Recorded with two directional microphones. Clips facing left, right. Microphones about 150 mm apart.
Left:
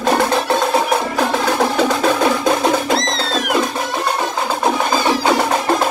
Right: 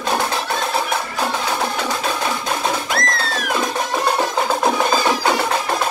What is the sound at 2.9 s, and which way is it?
Music, 25° left (ahead or behind).